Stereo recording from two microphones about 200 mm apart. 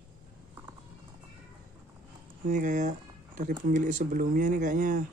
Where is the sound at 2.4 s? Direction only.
40° right (ahead or behind).